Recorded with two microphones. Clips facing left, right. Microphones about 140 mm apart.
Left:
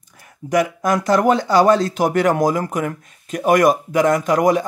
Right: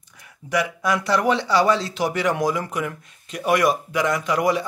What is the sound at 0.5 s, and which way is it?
Speech, 45° left (ahead or behind).